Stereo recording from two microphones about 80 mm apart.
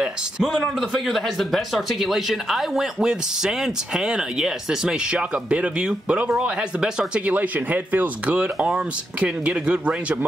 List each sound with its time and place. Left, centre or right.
0.0 s speech: centre